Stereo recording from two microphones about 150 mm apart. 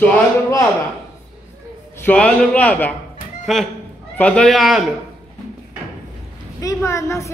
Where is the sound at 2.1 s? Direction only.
10° left (ahead or behind).